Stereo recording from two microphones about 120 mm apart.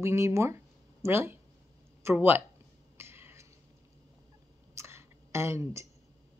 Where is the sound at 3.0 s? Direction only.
20° right (ahead or behind).